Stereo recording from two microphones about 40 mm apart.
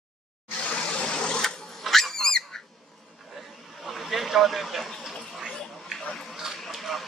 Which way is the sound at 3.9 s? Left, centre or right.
Centre.